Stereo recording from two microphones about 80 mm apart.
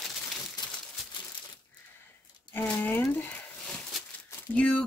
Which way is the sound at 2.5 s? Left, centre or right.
Left.